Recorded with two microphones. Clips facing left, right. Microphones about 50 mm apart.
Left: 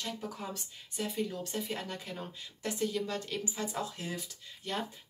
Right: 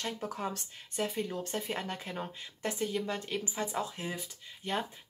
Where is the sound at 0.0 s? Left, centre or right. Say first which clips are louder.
Right 3 dB; right.